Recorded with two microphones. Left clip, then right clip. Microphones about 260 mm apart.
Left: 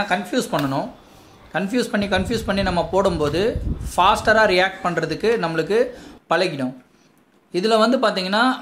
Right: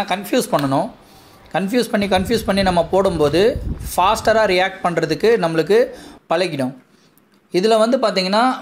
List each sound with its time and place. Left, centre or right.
0.0 s speech: centre